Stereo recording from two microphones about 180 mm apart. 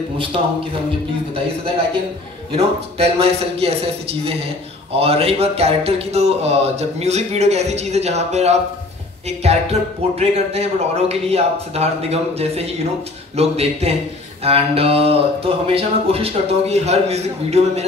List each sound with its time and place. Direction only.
2.5 s speech: 35° right (ahead or behind)